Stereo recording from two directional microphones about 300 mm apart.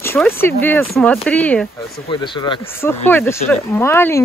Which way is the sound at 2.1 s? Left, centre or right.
Centre.